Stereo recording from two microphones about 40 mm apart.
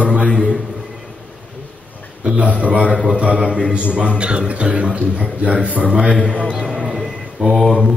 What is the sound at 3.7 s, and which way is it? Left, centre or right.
A man's voice, right.